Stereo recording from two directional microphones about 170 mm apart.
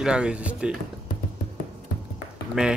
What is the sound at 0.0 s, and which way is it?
Speech, 5° right (ahead or behind).